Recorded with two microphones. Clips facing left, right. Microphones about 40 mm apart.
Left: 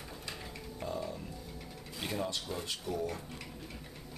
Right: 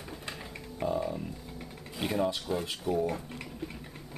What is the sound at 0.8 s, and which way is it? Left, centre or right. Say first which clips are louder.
Speech: right 8 dB; centre.